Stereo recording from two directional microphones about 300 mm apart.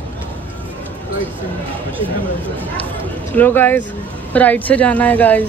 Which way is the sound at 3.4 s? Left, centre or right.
Centre.